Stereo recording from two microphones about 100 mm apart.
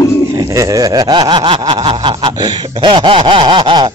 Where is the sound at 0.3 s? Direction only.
35° right (ahead or behind); by 1.6 s 55° right (ahead or behind).